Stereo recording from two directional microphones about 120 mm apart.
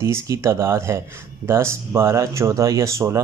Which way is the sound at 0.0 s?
25° right (ahead or behind).